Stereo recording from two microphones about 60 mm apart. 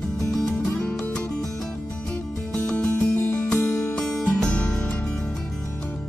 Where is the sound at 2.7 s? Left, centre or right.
Left.